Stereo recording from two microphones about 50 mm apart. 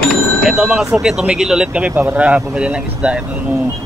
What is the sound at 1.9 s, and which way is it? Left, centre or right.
Speech, right.